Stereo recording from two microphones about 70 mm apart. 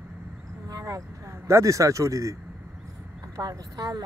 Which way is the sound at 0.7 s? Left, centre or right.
Right.